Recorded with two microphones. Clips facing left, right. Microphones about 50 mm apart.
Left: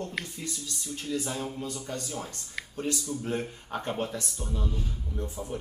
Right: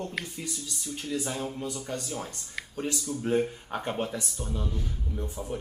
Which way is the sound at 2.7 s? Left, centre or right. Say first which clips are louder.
Even; centre.